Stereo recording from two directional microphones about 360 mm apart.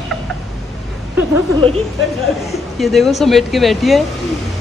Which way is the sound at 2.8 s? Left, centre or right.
Centre.